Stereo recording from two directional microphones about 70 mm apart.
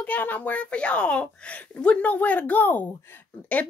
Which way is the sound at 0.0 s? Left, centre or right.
Left.